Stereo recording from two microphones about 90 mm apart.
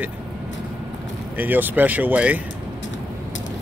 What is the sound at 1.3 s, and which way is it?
Speech, 20° right (ahead or behind).